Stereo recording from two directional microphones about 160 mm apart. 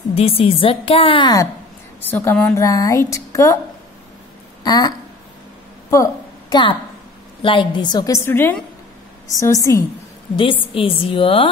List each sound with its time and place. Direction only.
0.1 s a woman's voice: 35° left (ahead or behind)
2.0 s a woman's voice: 10° left (ahead or behind)
4.6 s a woman's voice: 25° left (ahead or behind)
6.5 s a woman's voice: 30° left (ahead or behind)
8.3 s a woman's voice: 15° left (ahead or behind)
10.3 s a woman's voice: 35° left (ahead or behind)